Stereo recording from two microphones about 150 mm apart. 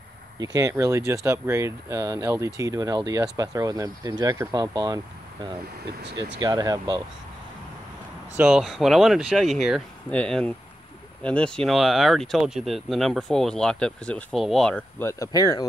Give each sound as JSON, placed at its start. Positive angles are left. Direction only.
{"t": 0.4, "sound": "speech", "side_deg": -25}
{"t": 8.4, "sound": "speech", "side_deg": -5}